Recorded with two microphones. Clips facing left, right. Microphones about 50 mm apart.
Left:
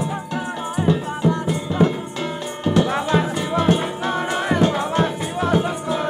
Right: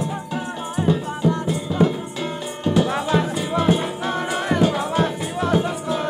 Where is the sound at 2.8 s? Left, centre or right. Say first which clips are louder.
Left 1 dB; centre.